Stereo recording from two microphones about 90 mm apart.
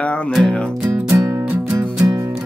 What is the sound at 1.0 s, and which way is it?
Music, 35° right (ahead or behind).